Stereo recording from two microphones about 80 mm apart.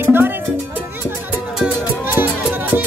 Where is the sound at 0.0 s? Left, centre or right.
Right.